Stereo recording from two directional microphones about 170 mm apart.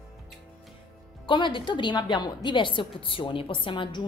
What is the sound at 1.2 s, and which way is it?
Speech, 30° left (ahead or behind).